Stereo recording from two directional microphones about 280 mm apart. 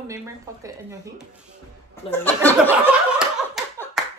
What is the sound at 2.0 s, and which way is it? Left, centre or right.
Speech, centre.